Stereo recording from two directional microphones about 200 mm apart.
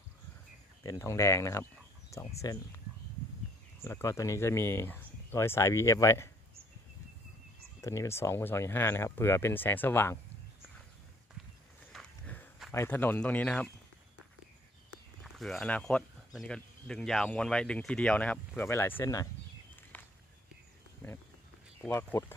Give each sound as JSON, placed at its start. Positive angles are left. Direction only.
{"t": 0.8, "sound": "speech", "side_deg": 15}
{"t": 3.8, "sound": "speech", "side_deg": 15}
{"t": 7.8, "sound": "speech", "side_deg": 15}
{"t": 11.9, "sound": "walk", "side_deg": 5}
{"t": 12.7, "sound": "speech", "side_deg": 10}
{"t": 15.2, "sound": "speech", "side_deg": 0}
{"t": 19.7, "sound": "a sound", "side_deg": 10}
{"t": 21.0, "sound": "speech", "side_deg": 10}